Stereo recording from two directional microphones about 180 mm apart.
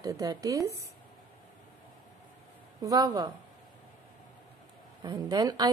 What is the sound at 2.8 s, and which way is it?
Speech, 20° right (ahead or behind).